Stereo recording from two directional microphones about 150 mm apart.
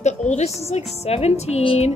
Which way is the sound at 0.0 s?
50° left (ahead or behind).